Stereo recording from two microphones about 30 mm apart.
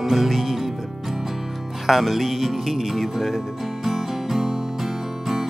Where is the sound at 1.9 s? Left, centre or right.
Centre.